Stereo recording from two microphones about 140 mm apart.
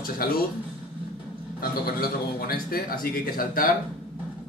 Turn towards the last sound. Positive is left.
turn(degrees=90)